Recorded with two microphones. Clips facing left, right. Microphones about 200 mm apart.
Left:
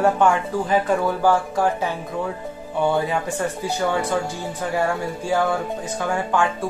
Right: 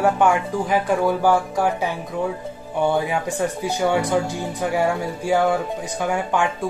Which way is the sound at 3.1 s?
15° right (ahead or behind).